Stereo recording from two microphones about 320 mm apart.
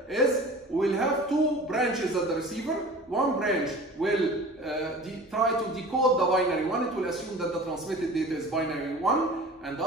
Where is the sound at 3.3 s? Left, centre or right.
Centre.